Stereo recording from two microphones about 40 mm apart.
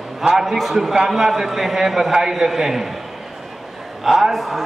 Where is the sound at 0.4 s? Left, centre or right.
Centre.